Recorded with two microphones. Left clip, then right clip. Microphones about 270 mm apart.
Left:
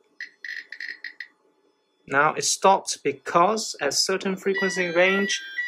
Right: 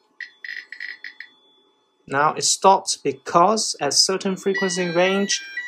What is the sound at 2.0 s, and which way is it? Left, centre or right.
Speech, centre.